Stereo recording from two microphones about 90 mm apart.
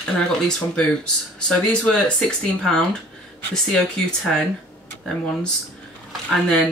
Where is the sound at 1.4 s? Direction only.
5° left (ahead or behind).